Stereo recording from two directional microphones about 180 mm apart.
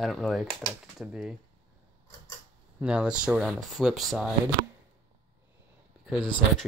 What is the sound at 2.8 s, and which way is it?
Speech, 5° right (ahead or behind).